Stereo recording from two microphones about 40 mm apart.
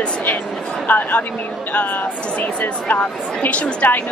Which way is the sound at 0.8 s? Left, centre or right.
Left.